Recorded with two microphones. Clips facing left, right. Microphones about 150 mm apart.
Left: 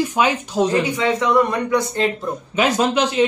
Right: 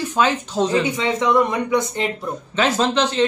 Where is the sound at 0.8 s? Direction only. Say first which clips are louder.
Left 1 dB; 25° right (ahead or behind).